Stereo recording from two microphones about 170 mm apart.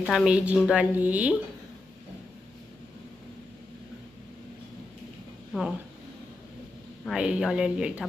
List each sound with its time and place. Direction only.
0.0 s a woman's voice: 5° right (ahead or behind)
5.5 s a woman's voice: 5° right (ahead or behind)
7.1 s speech: 5° right (ahead or behind)